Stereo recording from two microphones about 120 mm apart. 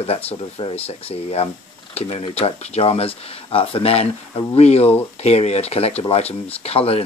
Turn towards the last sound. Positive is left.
turn(degrees=55)  # may be behind; listen again after turning